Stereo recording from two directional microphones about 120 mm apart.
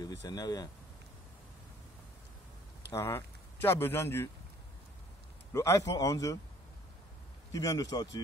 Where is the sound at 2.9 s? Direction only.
20° left (ahead or behind).